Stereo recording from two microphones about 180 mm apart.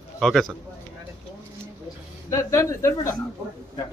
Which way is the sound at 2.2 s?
15° left (ahead or behind).